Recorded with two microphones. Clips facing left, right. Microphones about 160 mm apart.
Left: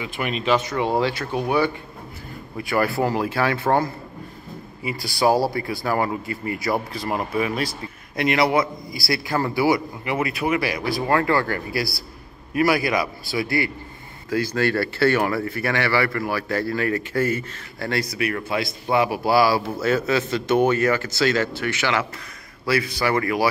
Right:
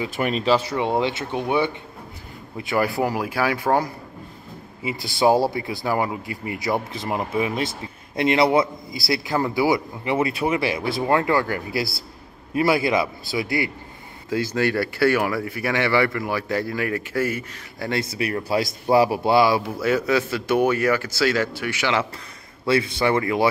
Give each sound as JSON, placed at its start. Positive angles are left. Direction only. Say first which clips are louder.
{"t": 0.0, "sound": "a man's voice", "louder": "right 3 dB", "side_deg": -35}
{"t": 22.7, "sound": "a man's voice", "louder": "right 2 dB", "side_deg": -25}